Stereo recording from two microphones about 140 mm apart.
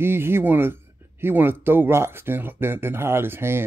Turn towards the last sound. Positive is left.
turn(degrees=-15)  # may be behind; listen again after turning